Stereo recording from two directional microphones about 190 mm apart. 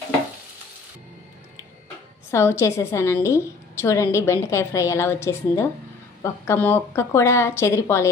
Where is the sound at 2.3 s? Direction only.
15° left (ahead or behind).